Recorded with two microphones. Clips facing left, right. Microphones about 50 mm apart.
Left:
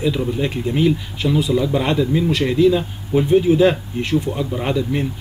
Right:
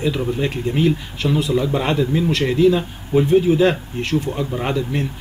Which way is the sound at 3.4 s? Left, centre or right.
Centre.